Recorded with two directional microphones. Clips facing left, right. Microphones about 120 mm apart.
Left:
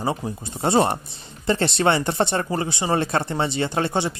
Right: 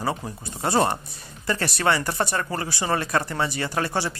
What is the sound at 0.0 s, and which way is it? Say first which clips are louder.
Speech: left 2 dB; 20° left (ahead or behind).